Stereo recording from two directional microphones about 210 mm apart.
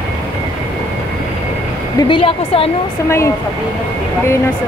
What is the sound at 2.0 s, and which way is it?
Speech, 25° left (ahead or behind).